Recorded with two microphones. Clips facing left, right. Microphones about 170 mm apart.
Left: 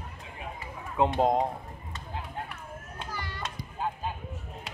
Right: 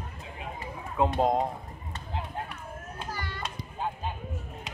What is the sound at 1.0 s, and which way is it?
Speech, 20° left (ahead or behind).